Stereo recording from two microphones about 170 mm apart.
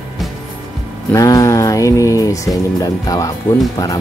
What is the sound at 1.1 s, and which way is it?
Speech, 20° left (ahead or behind).